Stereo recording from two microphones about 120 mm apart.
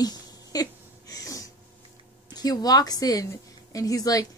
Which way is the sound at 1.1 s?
30° left (ahead or behind).